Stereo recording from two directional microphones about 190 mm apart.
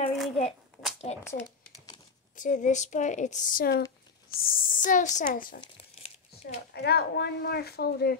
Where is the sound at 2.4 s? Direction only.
40° left (ahead or behind).